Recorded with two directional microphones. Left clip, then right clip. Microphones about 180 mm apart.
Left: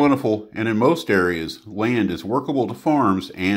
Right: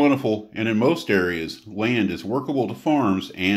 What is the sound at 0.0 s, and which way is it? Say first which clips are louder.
Speech: left 2 dB; 30° left (ahead or behind).